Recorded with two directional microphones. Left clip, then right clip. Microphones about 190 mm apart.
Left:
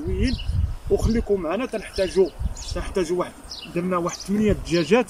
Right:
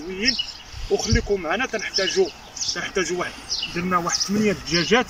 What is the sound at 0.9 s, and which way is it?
Speech, 20° left (ahead or behind).